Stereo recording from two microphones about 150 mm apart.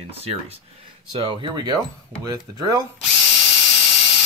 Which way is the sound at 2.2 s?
25° right (ahead or behind).